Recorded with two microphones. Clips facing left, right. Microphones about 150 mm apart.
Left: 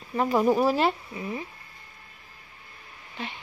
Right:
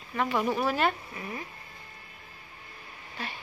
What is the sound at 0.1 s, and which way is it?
Speech, 35° left (ahead or behind).